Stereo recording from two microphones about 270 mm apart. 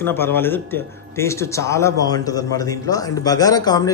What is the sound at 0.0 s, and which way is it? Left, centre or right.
Speech, centre.